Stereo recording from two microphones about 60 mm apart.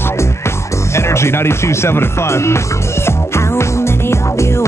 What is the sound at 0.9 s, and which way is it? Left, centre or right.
Music, left.